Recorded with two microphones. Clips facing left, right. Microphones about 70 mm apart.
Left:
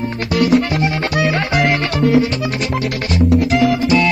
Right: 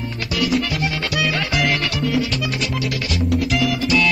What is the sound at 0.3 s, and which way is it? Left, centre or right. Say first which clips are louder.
Music: left 7 dB; left.